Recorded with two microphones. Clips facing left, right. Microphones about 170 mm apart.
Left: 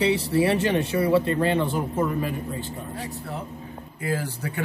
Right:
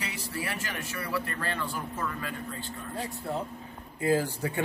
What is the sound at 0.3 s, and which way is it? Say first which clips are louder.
Speech: left 15 dB; 30° left (ahead or behind).